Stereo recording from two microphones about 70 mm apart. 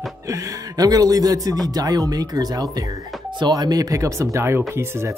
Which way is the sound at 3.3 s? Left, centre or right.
Right.